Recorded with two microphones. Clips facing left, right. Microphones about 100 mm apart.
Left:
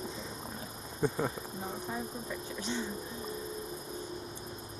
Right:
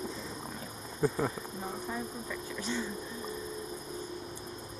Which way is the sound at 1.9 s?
25° left (ahead or behind).